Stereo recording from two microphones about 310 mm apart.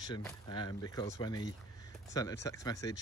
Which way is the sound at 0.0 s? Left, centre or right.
Centre.